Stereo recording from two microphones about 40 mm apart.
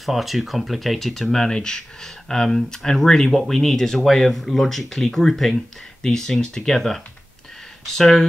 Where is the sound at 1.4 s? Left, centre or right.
Centre.